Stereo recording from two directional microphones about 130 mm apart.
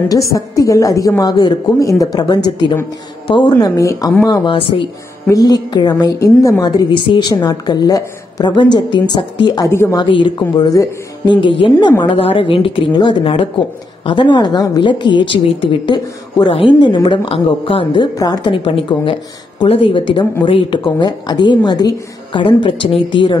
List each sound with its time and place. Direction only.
0.1 s a woman's voice: 25° left (ahead or behind)
3.5 s a woman's voice: 25° left (ahead or behind)
4.3 s a woman's voice: 40° left (ahead or behind)
5.3 s a woman's voice: 30° left (ahead or behind)
9.7 s a woman's voice: 20° left (ahead or behind)
9.9 s a woman's voice: 40° left (ahead or behind)
18.1 s a woman's voice: 25° left (ahead or behind)
19.7 s a woman's voice: 40° left (ahead or behind)